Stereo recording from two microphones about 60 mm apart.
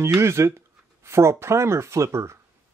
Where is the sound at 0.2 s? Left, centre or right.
Right.